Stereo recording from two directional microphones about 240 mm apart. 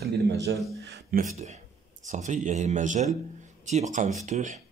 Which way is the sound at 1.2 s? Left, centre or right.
Right.